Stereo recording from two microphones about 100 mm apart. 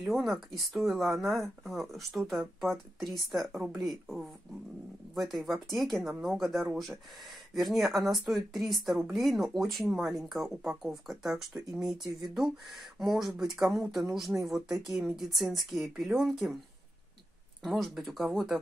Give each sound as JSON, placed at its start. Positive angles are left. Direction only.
{"t": 0.0, "sound": "speech", "side_deg": 0}
{"t": 17.6, "sound": "speech", "side_deg": 0}